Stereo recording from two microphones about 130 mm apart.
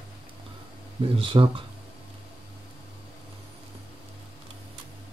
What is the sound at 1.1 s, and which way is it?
Speech, 40° right (ahead or behind).